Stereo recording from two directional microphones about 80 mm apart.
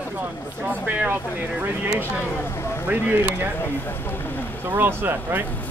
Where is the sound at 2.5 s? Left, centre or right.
Left.